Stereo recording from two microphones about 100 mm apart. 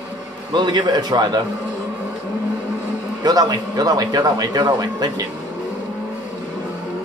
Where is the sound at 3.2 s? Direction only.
45° right (ahead or behind).